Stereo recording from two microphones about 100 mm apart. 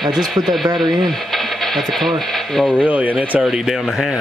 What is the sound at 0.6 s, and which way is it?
Speech, 45° right (ahead or behind).